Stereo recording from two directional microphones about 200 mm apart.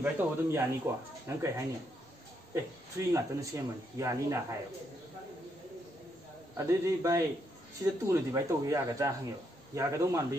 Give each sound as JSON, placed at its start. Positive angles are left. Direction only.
{"t": 0.0, "sound": "speech", "side_deg": -10}
{"t": 6.5, "sound": "speech", "side_deg": -15}